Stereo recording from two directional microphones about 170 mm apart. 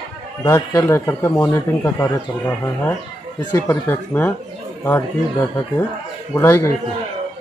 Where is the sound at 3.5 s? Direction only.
15° left (ahead or behind).